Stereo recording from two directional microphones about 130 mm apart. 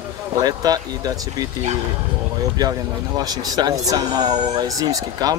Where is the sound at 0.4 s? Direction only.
30° right (ahead or behind).